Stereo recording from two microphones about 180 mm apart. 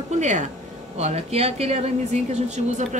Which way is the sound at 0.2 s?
40° right (ahead or behind).